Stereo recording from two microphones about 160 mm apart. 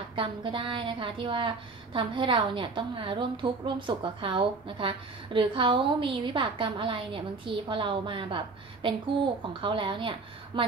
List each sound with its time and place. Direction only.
0.1 s a woman's voice: 35° right (ahead or behind)